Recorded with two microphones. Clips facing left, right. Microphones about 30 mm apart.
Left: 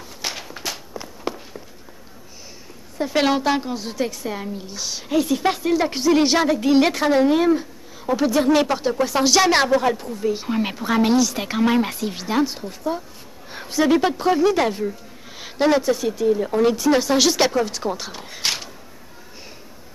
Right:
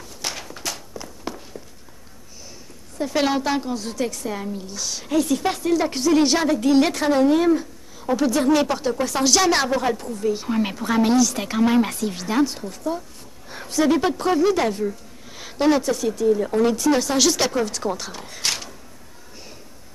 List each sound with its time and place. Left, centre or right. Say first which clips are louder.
0.2 s walk: left 1 dB; centre
3.0 s a woman's voice: left 2 dB; centre